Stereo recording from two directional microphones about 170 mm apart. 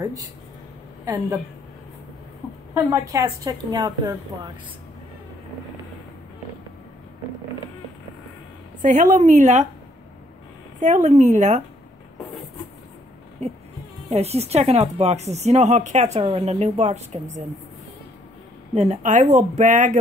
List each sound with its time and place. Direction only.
1.0 s a woman's voice: 20° right (ahead or behind)
2.7 s a woman's voice: 20° right (ahead or behind)
8.8 s speech: 50° right (ahead or behind)
10.8 s speech: 45° right (ahead or behind)
13.4 s speech: 40° right (ahead or behind)
18.8 s speech: 45° right (ahead or behind)